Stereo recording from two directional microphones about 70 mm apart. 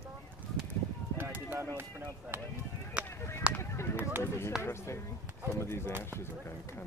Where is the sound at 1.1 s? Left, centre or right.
Right.